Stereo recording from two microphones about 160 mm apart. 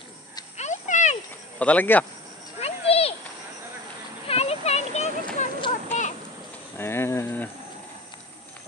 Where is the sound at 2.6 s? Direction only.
40° left (ahead or behind).